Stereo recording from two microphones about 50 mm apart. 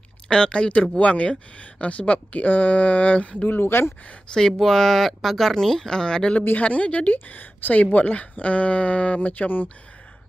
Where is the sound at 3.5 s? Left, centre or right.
Left.